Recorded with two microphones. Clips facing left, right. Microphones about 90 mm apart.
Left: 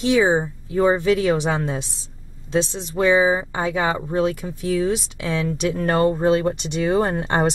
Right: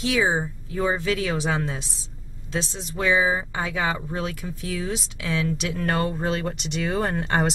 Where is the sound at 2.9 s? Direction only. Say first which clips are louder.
Left 5 dB; 30° left (ahead or behind).